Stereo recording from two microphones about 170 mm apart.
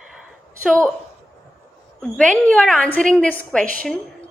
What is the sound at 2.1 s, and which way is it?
A woman's voice, 5° left (ahead or behind).